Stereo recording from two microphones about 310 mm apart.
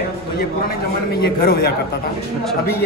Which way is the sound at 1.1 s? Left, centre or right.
Left.